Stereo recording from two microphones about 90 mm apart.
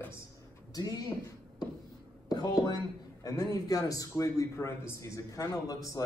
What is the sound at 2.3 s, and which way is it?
A man's voice, 45° left (ahead or behind).